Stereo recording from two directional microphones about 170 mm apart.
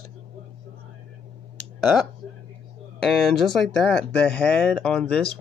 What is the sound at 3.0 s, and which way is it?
Speech, centre (ahead or behind).